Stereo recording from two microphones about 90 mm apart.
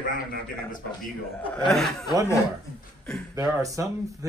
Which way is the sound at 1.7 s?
5° left (ahead or behind).